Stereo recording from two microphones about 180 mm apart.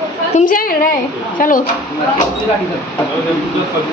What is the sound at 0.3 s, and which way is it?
A woman's voice, 45° left (ahead or behind).